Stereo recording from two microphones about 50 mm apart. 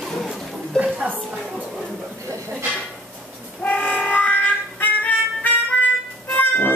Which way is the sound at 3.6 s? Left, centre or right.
Left.